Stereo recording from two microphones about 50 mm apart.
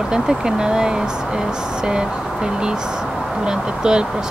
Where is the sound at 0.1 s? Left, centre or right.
Centre.